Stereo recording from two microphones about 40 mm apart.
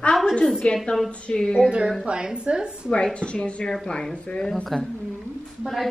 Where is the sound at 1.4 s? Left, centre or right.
Centre.